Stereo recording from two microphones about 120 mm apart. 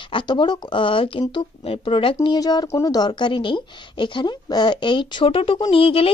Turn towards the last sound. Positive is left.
turn(degrees=50)  # may be behind; listen again after turning